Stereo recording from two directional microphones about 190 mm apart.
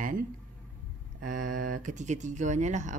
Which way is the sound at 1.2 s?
45° right (ahead or behind).